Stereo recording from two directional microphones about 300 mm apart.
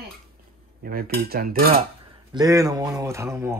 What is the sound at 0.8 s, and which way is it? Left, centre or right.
Cutlery, right.